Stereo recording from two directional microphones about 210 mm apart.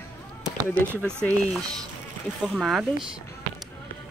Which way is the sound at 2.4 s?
Centre (ahead or behind).